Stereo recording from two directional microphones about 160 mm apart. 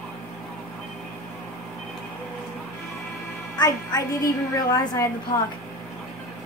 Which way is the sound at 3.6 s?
25° left (ahead or behind).